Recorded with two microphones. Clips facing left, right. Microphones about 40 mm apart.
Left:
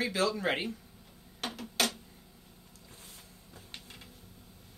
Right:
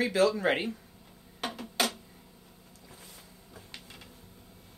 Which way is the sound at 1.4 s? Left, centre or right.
Centre.